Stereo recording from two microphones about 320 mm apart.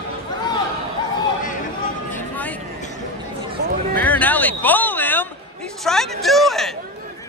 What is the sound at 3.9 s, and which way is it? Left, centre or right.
Speech, centre.